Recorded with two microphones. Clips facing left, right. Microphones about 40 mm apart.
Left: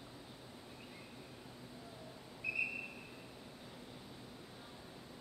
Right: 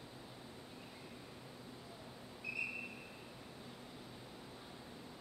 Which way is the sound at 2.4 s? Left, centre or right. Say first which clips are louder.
Left 4 dB; centre.